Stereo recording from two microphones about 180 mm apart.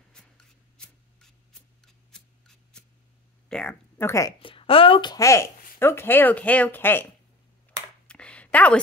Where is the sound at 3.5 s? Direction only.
5° left (ahead or behind).